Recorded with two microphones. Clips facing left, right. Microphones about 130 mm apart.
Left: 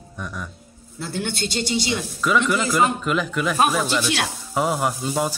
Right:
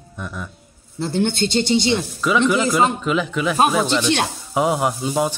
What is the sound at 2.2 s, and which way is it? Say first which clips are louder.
A woman's voice: right 1 dB; centre (ahead or behind).